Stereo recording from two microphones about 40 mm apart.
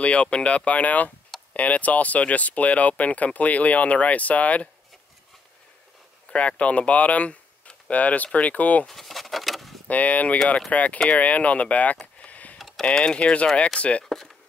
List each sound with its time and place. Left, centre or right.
0.0 s speech: left
6.2 s speech: left
8.8 s a sound: centre
9.8 s speech: left
12.2 s a sound: left
12.5 s typing: centre
12.8 s speech: left
14.0 s speech: centre